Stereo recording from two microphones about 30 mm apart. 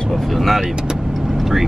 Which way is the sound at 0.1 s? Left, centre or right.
Centre.